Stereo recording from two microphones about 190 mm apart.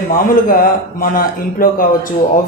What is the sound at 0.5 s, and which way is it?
A man's voice, 50° left (ahead or behind).